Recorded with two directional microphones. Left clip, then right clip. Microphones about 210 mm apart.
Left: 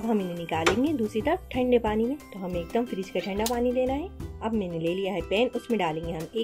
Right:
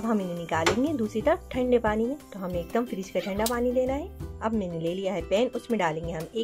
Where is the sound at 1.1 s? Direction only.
60° right (ahead or behind).